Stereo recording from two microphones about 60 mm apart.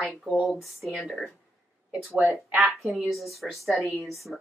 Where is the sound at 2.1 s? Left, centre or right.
Right.